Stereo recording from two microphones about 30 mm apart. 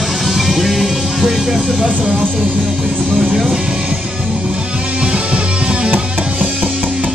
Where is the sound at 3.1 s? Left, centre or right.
Right.